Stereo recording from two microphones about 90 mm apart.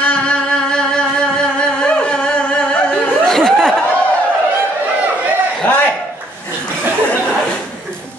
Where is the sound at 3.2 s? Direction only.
5° left (ahead or behind).